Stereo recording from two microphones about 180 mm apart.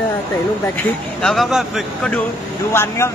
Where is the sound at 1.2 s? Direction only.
Centre (ahead or behind).